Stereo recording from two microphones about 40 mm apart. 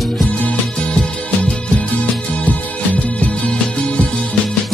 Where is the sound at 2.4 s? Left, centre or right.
Left.